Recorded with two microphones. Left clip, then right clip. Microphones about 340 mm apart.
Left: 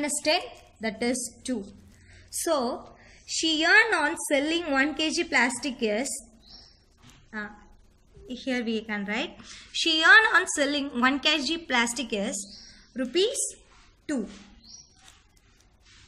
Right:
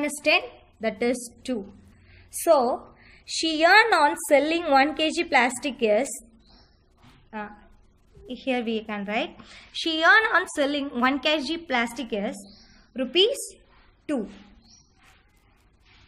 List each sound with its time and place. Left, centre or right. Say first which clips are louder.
0.0 s a woman's voice: right 3 dB; centre
7.2 s a woman's voice: right 1 dB; centre